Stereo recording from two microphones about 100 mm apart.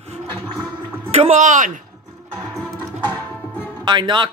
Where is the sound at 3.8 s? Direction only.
50° right (ahead or behind).